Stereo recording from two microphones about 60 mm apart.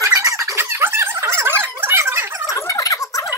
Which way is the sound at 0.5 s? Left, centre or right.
Right.